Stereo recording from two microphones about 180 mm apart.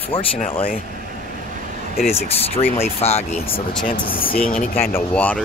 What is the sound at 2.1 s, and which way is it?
Speech, 35° left (ahead or behind).